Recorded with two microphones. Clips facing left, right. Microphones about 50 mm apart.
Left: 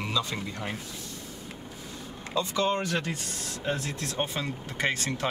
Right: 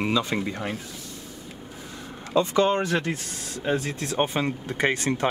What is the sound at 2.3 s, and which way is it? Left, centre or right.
Speech, right.